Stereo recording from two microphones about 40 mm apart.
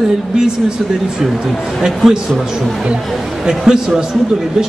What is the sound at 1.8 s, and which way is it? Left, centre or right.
Speech, centre.